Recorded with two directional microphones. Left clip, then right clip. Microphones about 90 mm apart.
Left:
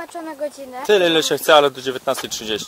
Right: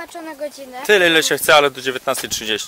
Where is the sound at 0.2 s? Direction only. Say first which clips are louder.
Left 2 dB; 5° right (ahead or behind).